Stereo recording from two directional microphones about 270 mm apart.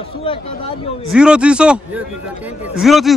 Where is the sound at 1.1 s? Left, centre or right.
Centre.